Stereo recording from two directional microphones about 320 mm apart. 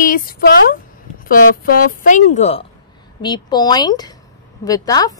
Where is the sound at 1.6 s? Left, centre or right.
Left.